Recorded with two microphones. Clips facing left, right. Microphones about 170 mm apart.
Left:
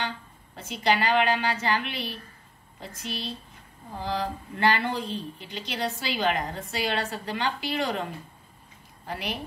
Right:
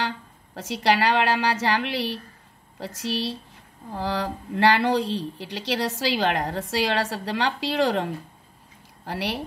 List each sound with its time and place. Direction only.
0.6 s speech: 90° right